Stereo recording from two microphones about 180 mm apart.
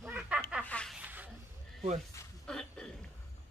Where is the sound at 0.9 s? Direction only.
10° right (ahead or behind).